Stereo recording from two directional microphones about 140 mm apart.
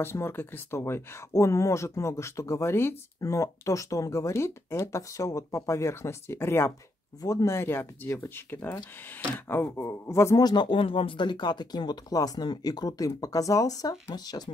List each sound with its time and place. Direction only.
0.0 s speech: 15° left (ahead or behind)